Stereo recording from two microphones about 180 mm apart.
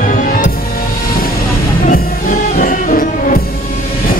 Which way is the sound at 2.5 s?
50° left (ahead or behind).